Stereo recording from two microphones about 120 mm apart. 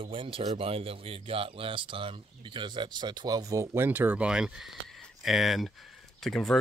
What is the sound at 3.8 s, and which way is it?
Speech, 15° right (ahead or behind).